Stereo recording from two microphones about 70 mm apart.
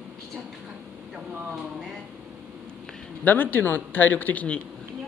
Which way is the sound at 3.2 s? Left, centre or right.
Left.